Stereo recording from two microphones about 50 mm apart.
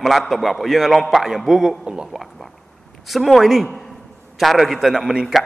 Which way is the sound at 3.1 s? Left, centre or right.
Centre.